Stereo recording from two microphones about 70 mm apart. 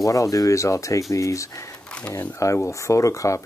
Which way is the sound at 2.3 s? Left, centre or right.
Left.